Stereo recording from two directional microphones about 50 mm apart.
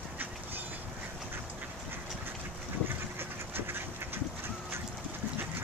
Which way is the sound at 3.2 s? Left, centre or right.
Right.